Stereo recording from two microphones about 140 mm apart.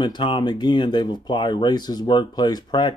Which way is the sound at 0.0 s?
30° left (ahead or behind).